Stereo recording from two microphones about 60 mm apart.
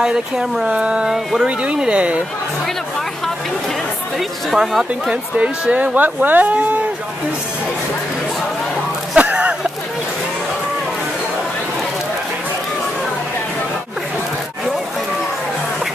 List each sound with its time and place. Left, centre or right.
0.0 s speech: centre
1.1 s speech: centre
1.6 s speech: centre
4.5 s speech: centre
5.1 s speech: right
9.1 s a sound: right